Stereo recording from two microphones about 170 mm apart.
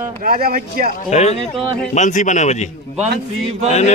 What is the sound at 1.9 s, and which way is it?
Chant, 45° left (ahead or behind).